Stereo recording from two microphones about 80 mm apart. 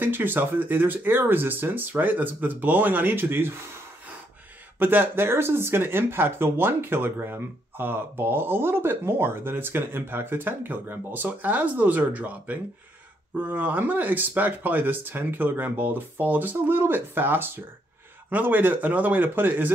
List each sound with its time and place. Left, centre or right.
0.0 s speech: right
4.7 s speech: right